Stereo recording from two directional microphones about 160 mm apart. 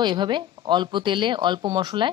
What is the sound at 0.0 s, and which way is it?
Speech, 30° right (ahead or behind).